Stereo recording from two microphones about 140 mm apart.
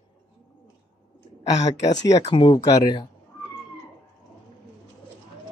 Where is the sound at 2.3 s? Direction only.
35° left (ahead or behind).